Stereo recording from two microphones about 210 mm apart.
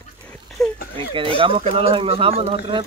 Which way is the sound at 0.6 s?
Centre (ahead or behind).